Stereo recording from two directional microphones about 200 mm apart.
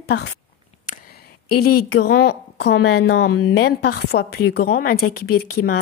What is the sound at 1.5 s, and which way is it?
A woman's voice, 50° left (ahead or behind).